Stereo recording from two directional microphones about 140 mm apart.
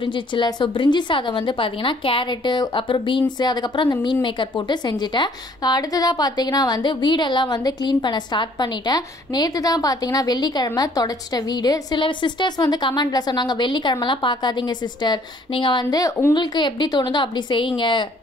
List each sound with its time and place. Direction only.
0.0 s speech: 35° left (ahead or behind)